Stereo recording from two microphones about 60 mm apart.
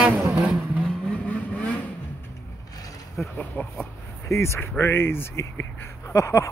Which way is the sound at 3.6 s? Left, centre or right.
Left.